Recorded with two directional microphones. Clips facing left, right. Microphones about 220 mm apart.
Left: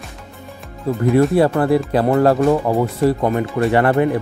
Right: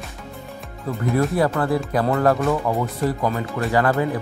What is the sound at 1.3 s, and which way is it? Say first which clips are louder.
Speech: left 6 dB; 30° left (ahead or behind).